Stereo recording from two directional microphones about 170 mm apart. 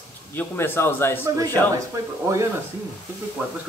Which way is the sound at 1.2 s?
20° right (ahead or behind).